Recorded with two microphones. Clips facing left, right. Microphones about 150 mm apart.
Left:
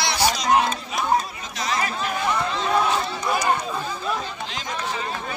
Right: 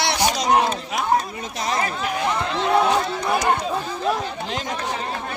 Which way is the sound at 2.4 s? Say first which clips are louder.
Right 5 dB; 70° right (ahead or behind).